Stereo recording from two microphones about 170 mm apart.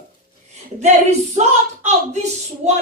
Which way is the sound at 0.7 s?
40° right (ahead or behind).